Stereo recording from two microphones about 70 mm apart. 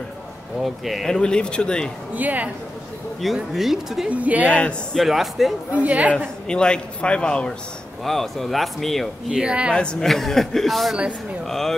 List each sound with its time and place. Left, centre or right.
0.6 s speech: centre
2.1 s a woman's voice: right
3.5 s a woman's voice: centre
4.1 s a woman's voice: right
4.9 s a woman's voice: centre
5.7 s a woman's voice: right
6.4 s a woman's voice: centre
9.3 s a woman's voice: centre
9.8 s a woman's voice: centre